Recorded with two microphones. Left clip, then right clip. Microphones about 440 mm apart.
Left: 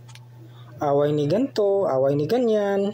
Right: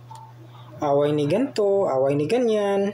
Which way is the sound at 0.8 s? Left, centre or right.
Left.